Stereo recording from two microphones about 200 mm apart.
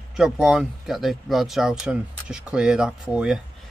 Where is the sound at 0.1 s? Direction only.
Centre (ahead or behind).